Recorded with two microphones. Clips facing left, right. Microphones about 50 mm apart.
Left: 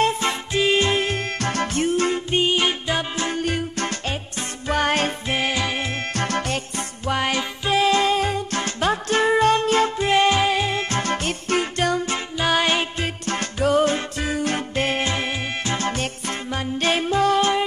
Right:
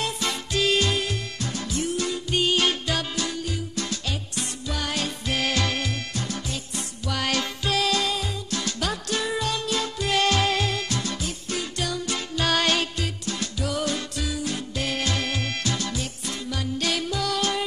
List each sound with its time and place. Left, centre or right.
0.0 s music: left
1.4 s music: left
2.4 s music: left
3.2 s music: left
5.3 s music: centre
6.1 s music: left
7.1 s music: left
10.9 s music: left
12.4 s music: centre
13.0 s music: left